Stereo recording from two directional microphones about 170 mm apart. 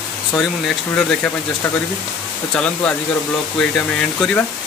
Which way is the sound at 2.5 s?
5° left (ahead or behind).